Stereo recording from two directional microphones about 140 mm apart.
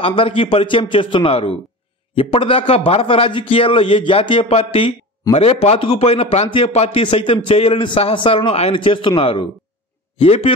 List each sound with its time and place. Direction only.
0.0 s a man's voice: 40° left (ahead or behind)